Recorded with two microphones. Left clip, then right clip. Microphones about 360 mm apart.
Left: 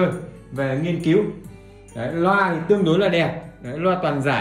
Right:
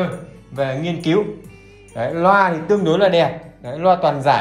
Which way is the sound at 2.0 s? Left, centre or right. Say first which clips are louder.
Right 5 dB; centre.